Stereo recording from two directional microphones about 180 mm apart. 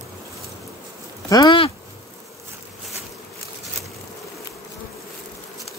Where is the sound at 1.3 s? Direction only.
25° left (ahead or behind).